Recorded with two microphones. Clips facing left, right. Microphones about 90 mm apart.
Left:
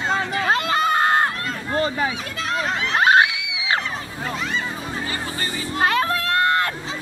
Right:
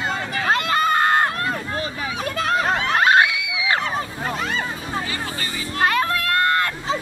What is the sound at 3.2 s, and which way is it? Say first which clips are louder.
Screaming: even; 25° left (ahead or behind).